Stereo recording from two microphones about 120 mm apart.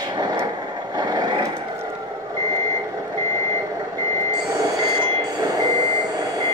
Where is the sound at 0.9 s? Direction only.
35° right (ahead or behind).